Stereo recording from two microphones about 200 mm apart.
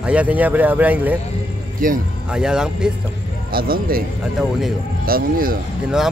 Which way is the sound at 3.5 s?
50° right (ahead or behind).